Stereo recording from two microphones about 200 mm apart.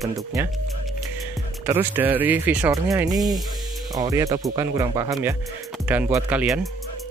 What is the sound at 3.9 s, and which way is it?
Speech, 15° right (ahead or behind).